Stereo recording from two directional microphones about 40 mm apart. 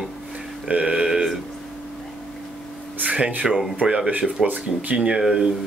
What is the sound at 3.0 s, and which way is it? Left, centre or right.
Speech, right.